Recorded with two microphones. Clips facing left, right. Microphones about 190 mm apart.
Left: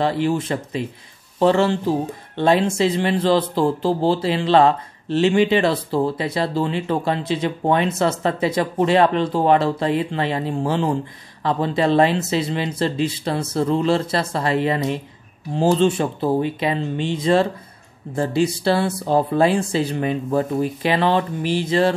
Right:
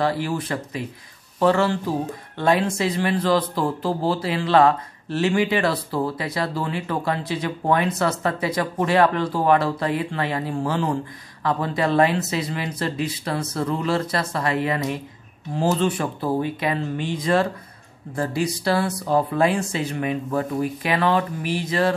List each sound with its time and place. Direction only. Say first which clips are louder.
0.0 s speech: left 3 dB; 25° left (ahead or behind)